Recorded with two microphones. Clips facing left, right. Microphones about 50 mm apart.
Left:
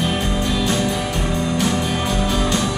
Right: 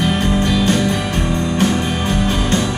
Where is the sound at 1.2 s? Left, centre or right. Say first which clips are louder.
Right 3 dB; right.